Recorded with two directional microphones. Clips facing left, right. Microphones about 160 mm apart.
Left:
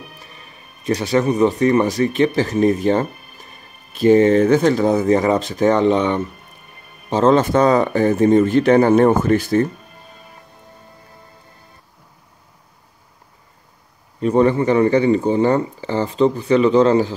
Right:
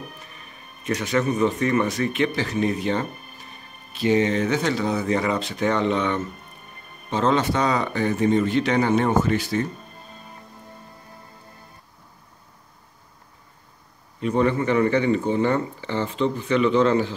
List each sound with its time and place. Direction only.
0.8 s speech: 35° left (ahead or behind)
14.2 s speech: 35° left (ahead or behind)